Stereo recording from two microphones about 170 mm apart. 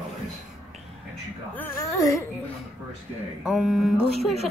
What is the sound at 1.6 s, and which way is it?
Speech, 20° left (ahead or behind).